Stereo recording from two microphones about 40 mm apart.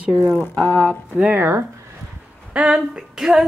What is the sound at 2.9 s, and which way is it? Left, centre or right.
Speech, centre.